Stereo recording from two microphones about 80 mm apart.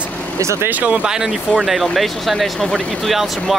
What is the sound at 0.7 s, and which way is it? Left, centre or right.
Speech, centre.